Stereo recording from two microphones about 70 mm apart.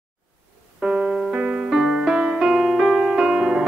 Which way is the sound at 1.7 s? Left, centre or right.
Centre.